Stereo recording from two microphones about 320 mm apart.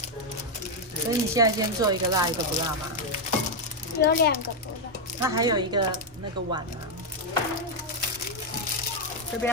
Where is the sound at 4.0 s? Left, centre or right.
Left.